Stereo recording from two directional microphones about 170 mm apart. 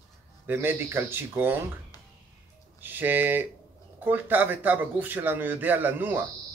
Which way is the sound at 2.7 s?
10° right (ahead or behind).